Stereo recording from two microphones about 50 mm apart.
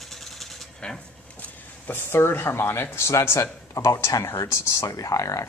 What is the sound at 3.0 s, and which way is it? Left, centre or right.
Speech, left.